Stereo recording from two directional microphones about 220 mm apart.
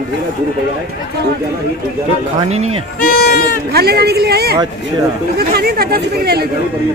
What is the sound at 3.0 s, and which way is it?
Speech, 40° left (ahead or behind).